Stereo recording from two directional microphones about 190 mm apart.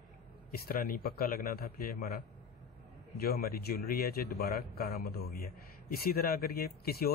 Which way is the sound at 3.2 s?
55° left (ahead or behind).